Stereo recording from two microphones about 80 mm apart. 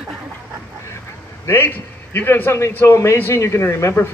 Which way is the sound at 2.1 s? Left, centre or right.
Left.